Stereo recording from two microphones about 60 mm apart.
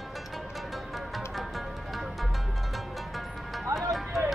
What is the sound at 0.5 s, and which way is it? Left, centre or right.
Music, centre.